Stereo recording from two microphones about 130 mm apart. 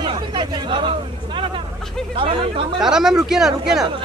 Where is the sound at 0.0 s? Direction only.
40° right (ahead or behind).